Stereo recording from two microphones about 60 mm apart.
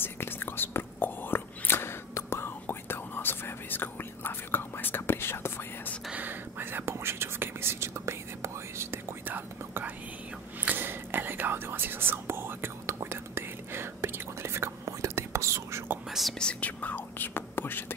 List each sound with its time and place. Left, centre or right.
0.0 s whispering: left
6.1 s whispering: right
9.3 s whispering: right
16.1 s whispering: centre
16.3 s whispering: centre
16.8 s whispering: left